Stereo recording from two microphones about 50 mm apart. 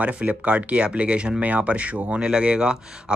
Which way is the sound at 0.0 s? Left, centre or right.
Right.